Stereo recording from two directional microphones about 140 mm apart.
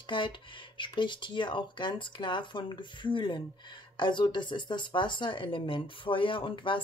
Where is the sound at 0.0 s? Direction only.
35° left (ahead or behind).